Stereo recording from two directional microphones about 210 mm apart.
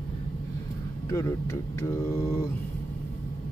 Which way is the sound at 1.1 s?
15° left (ahead or behind).